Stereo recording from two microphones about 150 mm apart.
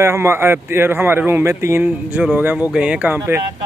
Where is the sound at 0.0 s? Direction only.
15° right (ahead or behind).